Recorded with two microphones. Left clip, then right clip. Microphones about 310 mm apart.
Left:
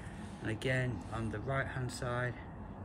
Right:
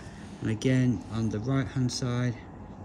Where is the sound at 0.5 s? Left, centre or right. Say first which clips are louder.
Right 7 dB; centre.